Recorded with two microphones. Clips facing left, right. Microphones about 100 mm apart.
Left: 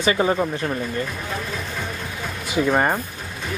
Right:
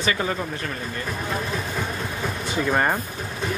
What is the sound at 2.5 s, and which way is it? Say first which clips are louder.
Speech: left 3 dB; 5° left (ahead or behind).